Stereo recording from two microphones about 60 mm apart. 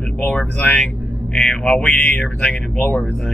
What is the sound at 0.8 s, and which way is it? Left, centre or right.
Speech, centre.